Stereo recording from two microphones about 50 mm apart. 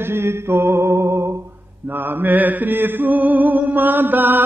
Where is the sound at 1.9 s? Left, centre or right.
Right.